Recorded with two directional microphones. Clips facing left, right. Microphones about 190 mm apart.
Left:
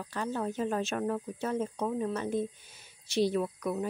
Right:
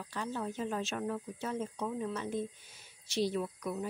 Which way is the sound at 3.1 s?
60° left (ahead or behind).